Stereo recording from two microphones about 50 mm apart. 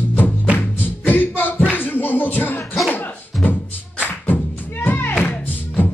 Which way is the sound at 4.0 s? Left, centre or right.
Left.